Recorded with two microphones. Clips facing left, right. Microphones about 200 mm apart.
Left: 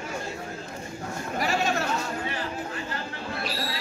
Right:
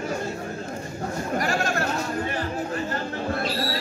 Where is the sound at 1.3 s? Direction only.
5° left (ahead or behind).